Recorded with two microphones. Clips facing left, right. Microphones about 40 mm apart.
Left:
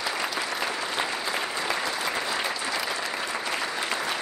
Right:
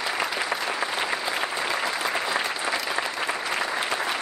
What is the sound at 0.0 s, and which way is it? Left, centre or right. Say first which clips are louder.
Applause: right 2 dB; centre.